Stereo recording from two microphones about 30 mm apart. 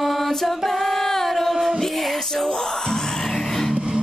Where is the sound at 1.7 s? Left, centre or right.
Centre.